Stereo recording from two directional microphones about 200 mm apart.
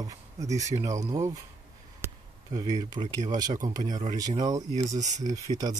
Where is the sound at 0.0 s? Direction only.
15° right (ahead or behind).